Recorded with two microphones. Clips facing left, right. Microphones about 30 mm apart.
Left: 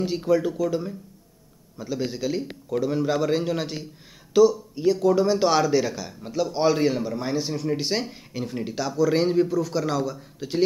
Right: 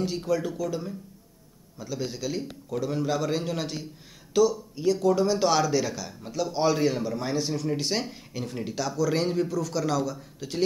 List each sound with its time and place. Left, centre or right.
0.0 s a man's voice: centre